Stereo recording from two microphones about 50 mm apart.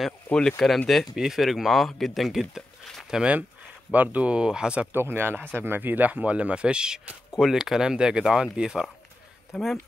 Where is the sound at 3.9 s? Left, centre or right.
Right.